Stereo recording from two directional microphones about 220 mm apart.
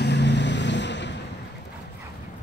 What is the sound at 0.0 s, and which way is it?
Vehicle, 50° left (ahead or behind).